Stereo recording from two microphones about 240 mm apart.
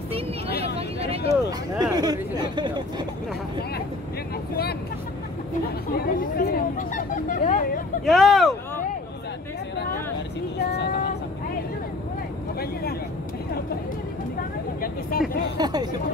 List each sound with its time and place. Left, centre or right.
0.7 s vehicle: right
1.3 s speech: centre
5.9 s hubbub: left
8.0 s vehicle: centre
10.7 s a sound: left
14.8 s speech: left
15.5 s speech: centre